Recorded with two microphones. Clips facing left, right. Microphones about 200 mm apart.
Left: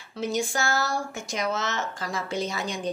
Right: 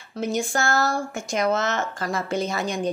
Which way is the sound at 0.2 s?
50° right (ahead or behind).